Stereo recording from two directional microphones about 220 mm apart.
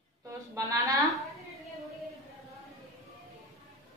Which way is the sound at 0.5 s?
15° right (ahead or behind).